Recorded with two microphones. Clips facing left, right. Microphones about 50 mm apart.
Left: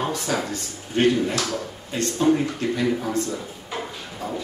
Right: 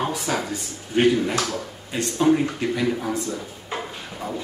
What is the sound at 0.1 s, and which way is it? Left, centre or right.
Speech, centre.